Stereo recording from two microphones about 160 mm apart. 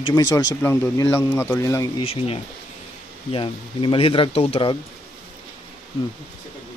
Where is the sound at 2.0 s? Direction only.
40° left (ahead or behind).